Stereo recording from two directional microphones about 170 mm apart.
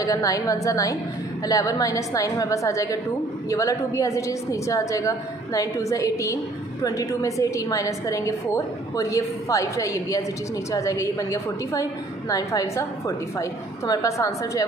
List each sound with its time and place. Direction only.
0.0 s a woman's voice: 20° left (ahead or behind)